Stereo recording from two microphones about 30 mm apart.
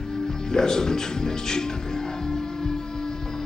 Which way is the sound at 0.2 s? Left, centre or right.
Left.